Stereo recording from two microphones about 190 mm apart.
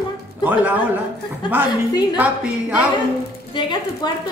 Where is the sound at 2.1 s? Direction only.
5° right (ahead or behind).